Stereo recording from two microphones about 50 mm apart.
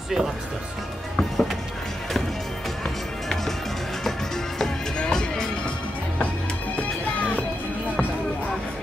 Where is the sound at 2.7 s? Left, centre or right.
Centre.